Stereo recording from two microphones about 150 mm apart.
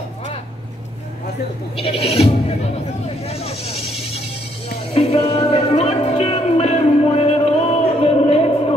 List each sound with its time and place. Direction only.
1.8 s speech: 40° left (ahead or behind)
3.3 s bleat: 40° left (ahead or behind)
4.9 s music: 40° left (ahead or behind)